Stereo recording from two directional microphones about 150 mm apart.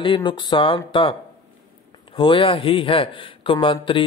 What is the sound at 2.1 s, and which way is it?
Speech, 35° left (ahead or behind).